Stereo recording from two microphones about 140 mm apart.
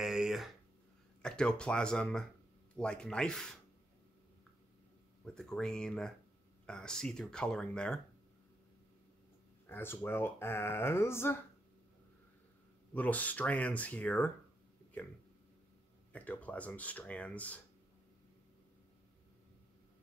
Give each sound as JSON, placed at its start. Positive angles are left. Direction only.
{"t": 0.0, "sound": "a sound", "side_deg": -5}
{"t": 1.2, "sound": "speech", "side_deg": 5}
{"t": 5.2, "sound": "speech", "side_deg": 5}
{"t": 9.7, "sound": "speech", "side_deg": 15}
{"t": 12.9, "sound": "speech", "side_deg": 10}
{"t": 16.1, "sound": "speech", "side_deg": 10}